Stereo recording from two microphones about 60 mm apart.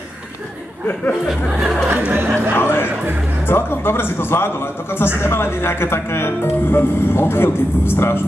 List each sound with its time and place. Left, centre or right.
1.2 s speech: centre
1.9 s speech: right
2.5 s a man's voice: left